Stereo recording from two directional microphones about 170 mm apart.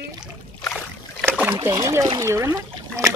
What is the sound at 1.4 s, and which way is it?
Speech, 10° right (ahead or behind).